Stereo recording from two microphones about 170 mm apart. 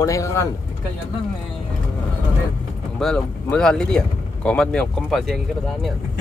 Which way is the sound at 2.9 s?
5° left (ahead or behind).